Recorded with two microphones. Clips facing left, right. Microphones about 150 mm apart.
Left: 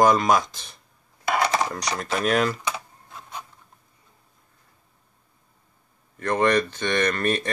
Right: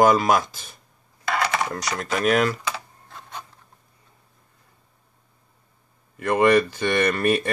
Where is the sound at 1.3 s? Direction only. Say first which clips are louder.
Left 1 dB; 30° left (ahead or behind).